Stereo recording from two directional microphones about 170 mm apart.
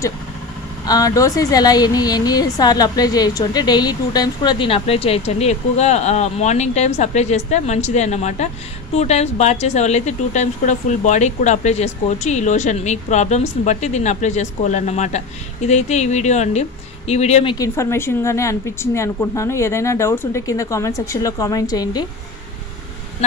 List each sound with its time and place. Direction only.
0.8 s speech: 20° left (ahead or behind); by 17.6 s 40° left (ahead or behind)
17.6 s a woman's voice: 15° left (ahead or behind)